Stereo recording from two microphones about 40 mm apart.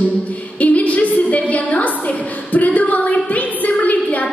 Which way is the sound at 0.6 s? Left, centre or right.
Left.